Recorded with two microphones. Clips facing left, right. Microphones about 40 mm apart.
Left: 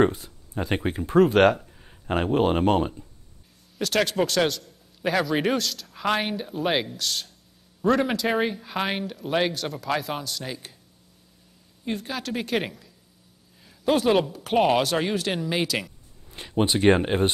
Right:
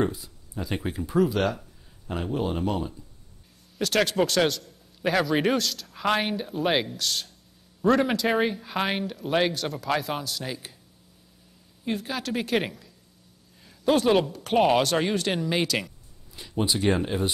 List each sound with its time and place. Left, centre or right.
0.0 s speech: left
3.7 s a man's voice: centre
11.8 s a man's voice: centre
16.3 s speech: left